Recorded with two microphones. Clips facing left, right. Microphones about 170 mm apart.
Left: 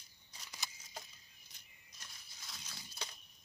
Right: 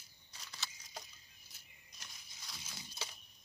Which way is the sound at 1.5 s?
5° right (ahead or behind).